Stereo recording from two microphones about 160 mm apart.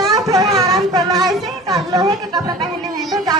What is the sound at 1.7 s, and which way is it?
Speech, 25° right (ahead or behind).